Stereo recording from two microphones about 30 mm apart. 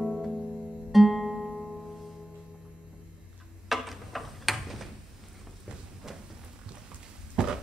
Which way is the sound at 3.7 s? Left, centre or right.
Centre.